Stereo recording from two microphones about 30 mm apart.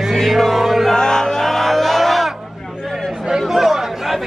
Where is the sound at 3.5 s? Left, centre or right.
Centre.